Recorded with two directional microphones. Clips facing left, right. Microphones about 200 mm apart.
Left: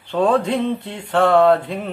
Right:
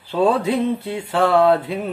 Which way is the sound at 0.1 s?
5° right (ahead or behind).